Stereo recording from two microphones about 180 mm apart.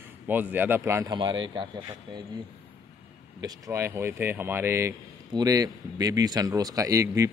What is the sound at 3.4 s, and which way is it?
A man's voice, 15° right (ahead or behind).